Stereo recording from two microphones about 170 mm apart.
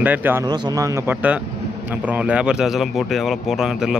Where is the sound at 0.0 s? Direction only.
10° right (ahead or behind).